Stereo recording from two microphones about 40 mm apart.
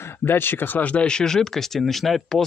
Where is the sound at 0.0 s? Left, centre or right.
Left.